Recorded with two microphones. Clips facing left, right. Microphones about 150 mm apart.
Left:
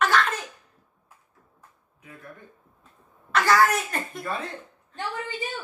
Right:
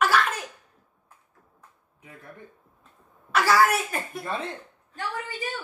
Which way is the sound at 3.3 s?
5° right (ahead or behind).